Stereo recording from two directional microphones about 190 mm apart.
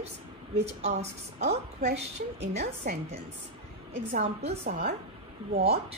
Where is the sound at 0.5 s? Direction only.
35° right (ahead or behind).